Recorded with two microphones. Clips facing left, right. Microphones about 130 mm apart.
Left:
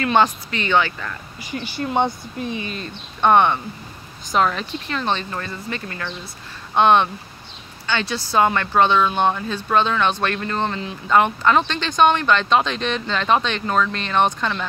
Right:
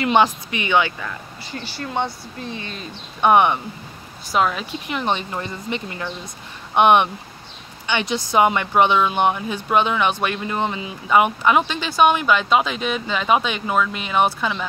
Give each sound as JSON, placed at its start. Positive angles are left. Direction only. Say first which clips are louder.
{"t": 0.0, "sound": "speech", "louder": "right 1 dB", "side_deg": -15}
{"t": 1.4, "sound": "speech", "louder": "left 6 dB", "side_deg": 15}
{"t": 2.7, "sound": "speech", "louder": "left 2 dB", "side_deg": -10}